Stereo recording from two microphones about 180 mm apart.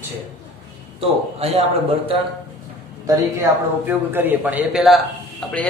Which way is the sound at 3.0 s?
20° right (ahead or behind).